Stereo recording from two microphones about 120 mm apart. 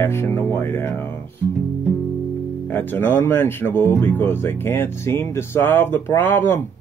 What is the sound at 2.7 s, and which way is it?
Speech, 20° left (ahead or behind).